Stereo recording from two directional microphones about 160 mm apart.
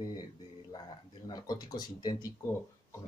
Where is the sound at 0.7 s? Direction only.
25° left (ahead or behind).